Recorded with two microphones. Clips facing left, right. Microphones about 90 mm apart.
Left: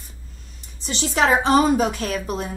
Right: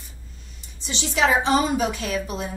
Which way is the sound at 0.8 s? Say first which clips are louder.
Left 2 dB; 45° left (ahead or behind).